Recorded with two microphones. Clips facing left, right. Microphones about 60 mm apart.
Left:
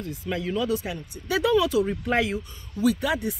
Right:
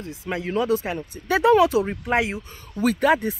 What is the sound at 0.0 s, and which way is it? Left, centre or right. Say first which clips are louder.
Speech: right 1 dB; right.